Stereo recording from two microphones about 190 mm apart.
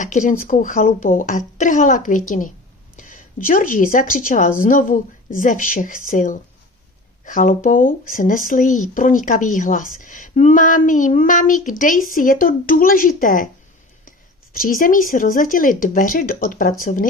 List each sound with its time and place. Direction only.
0.0 s speech: 40° left (ahead or behind)
14.6 s speech: 45° left (ahead or behind)